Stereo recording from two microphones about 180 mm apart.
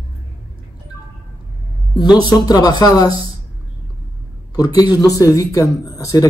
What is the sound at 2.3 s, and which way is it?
Speech, 20° left (ahead or behind).